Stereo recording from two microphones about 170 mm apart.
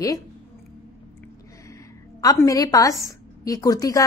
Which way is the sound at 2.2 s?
20° left (ahead or behind).